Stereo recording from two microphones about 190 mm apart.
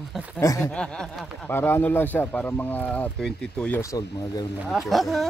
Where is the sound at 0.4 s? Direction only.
15° left (ahead or behind).